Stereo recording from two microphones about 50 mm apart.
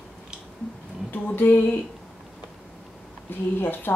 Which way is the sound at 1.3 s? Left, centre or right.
Left.